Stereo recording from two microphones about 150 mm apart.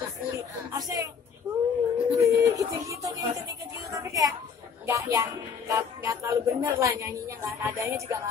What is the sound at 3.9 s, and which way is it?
A woman's voice, 20° right (ahead or behind).